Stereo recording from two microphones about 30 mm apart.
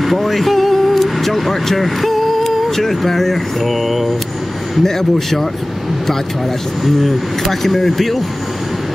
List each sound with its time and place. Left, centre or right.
0.0 s speech: centre
4.8 s speech: centre
6.8 s speech: centre